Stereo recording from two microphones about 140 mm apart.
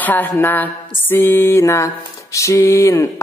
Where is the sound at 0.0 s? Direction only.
15° left (ahead or behind).